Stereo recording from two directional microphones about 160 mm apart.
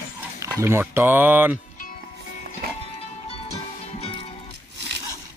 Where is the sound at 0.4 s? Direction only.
15° right (ahead or behind).